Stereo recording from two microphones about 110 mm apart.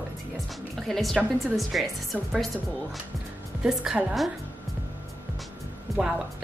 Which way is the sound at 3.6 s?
5° right (ahead or behind).